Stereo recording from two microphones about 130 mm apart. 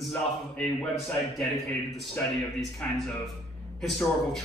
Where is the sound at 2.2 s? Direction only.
15° left (ahead or behind).